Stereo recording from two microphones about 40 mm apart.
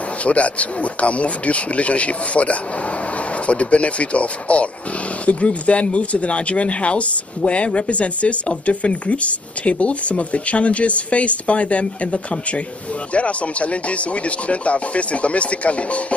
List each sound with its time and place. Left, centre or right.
0.2 s speech: left